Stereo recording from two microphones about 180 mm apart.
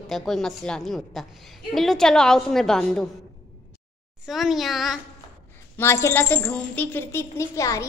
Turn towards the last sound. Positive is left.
turn(degrees=15)  # may be behind; listen again after turning